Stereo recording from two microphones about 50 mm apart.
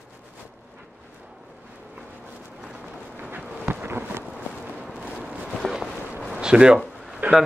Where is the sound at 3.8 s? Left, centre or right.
Right.